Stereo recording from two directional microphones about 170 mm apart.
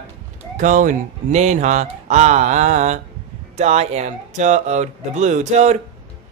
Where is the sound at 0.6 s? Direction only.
50° right (ahead or behind).